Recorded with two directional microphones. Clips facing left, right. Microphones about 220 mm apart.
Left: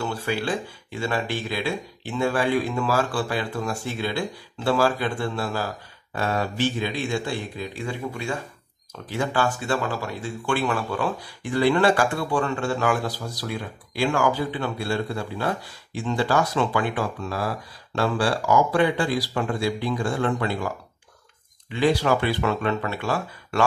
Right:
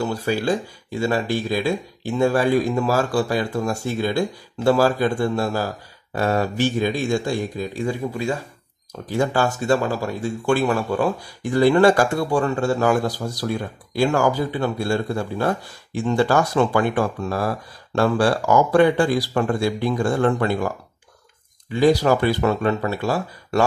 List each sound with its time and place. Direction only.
0.0 s speech: 40° right (ahead or behind)
21.7 s speech: 40° right (ahead or behind)